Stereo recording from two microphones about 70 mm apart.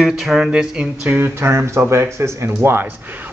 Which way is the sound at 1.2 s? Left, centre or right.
Right.